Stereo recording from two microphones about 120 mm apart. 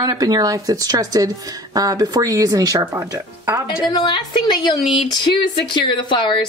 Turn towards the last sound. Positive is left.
turn(degrees=45)  # may be behind; listen again after turning